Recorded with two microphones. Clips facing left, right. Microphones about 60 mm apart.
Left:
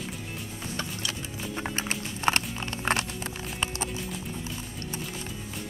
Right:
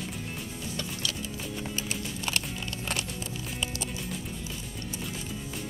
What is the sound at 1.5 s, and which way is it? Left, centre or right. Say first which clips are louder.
Music: left 5 dB; left.